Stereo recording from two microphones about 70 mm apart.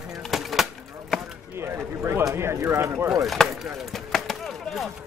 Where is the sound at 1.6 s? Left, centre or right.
Right.